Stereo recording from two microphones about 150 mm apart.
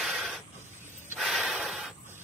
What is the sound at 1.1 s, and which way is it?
Snort, centre (ahead or behind).